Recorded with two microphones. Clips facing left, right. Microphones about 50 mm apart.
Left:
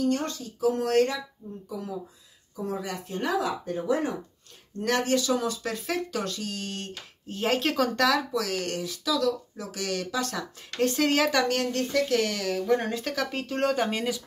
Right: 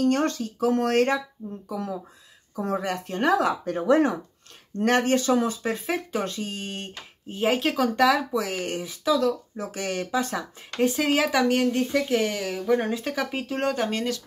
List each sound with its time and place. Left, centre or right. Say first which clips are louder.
0.0 s speech: right 4 dB; right
1.7 s speech: right 3 dB; right
4.7 s speech: right 4 dB; right
5.6 s speech: right 3 dB; right
7.3 s speech: right 2 dB; centre
10.9 s speech: even; centre
12.6 s speech: right 4 dB; centre